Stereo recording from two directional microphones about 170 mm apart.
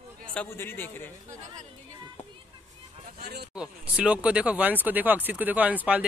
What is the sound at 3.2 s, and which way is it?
Speech, 70° right (ahead or behind).